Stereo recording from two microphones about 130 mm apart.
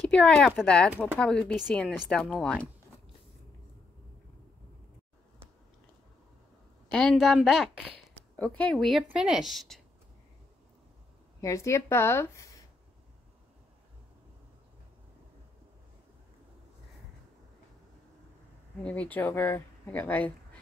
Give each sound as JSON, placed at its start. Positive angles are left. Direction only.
{"t": 0.1, "sound": "a woman's voice", "side_deg": 5}
{"t": 6.9, "sound": "a woman's voice", "side_deg": 5}
{"t": 8.1, "sound": "a sound", "side_deg": 15}
{"t": 8.5, "sound": "a woman's voice", "side_deg": 10}
{"t": 11.4, "sound": "speech", "side_deg": 25}
{"t": 18.9, "sound": "speech", "side_deg": 10}